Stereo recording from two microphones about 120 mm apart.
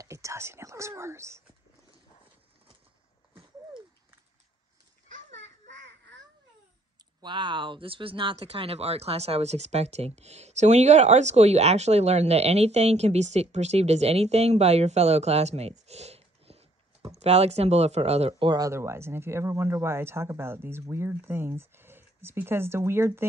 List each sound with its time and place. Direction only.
0.0 s speech: 25° right (ahead or behind)
7.2 s speech: 40° right (ahead or behind); by 18.5 s 60° right (ahead or behind)
18.5 s speech: 25° right (ahead or behind)